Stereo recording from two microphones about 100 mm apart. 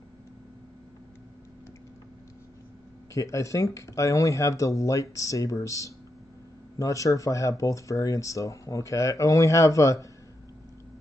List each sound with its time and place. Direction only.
3.2 s speech: 30° left (ahead or behind)